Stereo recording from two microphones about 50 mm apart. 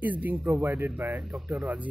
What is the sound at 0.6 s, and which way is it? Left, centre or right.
Speech, right.